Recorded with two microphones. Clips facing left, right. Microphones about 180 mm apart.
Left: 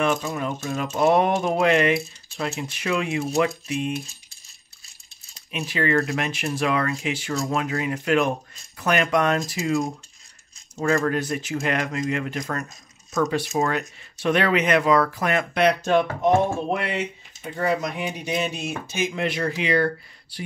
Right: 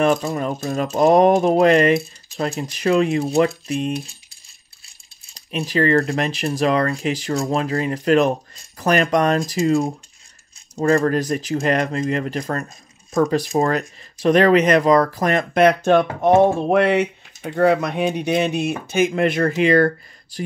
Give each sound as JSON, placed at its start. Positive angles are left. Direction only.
{"t": 0.0, "sound": "speech", "side_deg": -35}
{"t": 5.5, "sound": "speech", "side_deg": -35}
{"t": 15.6, "sound": "speech", "side_deg": -60}